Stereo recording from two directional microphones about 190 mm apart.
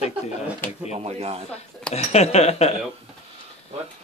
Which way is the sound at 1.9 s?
35° left (ahead or behind).